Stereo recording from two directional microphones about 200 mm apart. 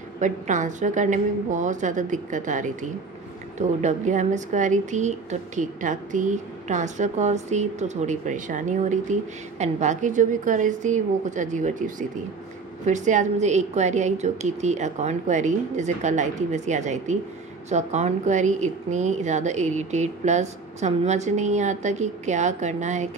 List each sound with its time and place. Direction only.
0.2 s a woman's voice: 40° right (ahead or behind)